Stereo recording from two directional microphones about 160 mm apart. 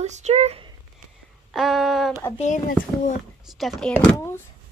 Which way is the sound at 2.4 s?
50° left (ahead or behind).